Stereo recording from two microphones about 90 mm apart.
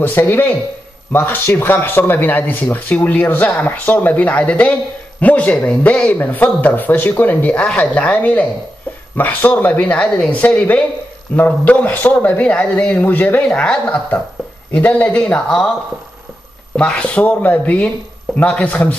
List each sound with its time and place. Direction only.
0.0 s speech: 20° left (ahead or behind)
16.7 s speech: 10° left (ahead or behind)